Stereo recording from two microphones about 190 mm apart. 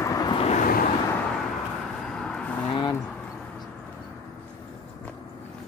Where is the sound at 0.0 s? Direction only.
20° left (ahead or behind).